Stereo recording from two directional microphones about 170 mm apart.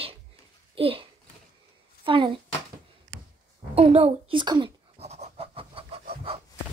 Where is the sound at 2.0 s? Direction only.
30° right (ahead or behind).